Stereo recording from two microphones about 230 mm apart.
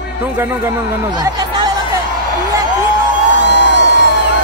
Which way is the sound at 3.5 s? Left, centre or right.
Right.